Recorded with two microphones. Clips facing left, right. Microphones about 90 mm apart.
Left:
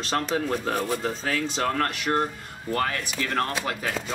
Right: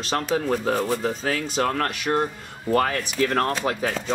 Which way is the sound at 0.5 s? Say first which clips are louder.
Right 3 dB; 35° right (ahead or behind).